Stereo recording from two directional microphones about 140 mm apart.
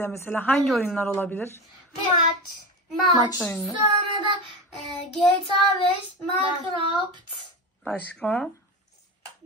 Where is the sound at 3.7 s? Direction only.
35° right (ahead or behind).